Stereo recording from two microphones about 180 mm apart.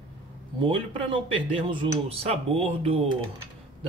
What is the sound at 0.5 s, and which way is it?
Speech, 30° right (ahead or behind).